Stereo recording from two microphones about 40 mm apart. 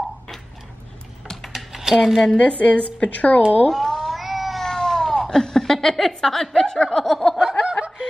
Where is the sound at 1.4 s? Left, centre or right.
Centre.